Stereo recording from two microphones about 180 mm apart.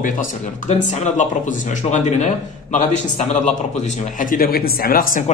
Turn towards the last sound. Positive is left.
turn(degrees=50)  # may be behind; listen again after turning